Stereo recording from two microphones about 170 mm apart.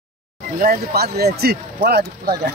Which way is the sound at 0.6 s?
60° right (ahead or behind).